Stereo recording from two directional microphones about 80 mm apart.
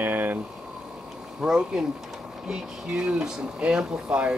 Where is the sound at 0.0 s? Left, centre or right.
Right.